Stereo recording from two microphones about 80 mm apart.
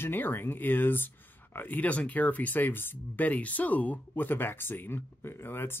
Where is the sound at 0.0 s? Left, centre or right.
Left.